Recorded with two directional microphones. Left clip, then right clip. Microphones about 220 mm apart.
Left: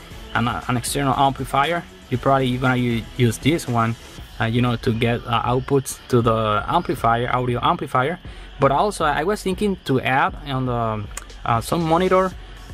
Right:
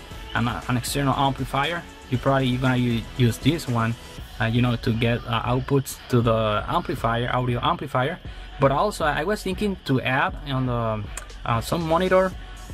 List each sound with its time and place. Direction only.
0.3 s speech: 25° left (ahead or behind)